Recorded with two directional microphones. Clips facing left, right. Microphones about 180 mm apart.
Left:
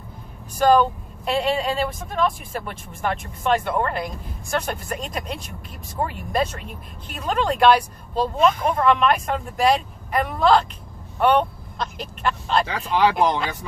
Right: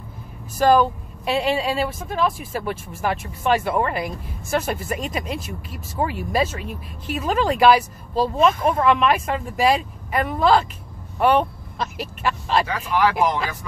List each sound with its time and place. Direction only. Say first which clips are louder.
0.6 s speech: even; 5° right (ahead or behind)
12.6 s speech: left 1 dB; 25° left (ahead or behind)